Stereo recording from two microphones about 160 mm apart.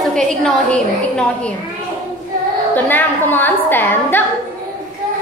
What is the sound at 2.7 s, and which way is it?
A woman's voice, 10° left (ahead or behind).